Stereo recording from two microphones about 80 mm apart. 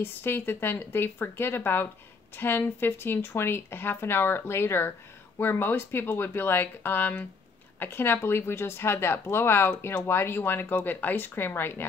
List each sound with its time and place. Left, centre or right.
0.0 s speech: left